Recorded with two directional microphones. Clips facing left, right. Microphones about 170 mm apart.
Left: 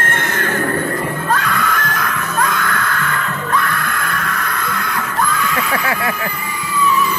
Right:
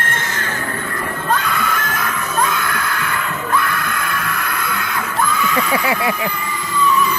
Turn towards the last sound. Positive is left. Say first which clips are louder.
# right 2 dB
turn(degrees=0)  # may be behind; listen again after turning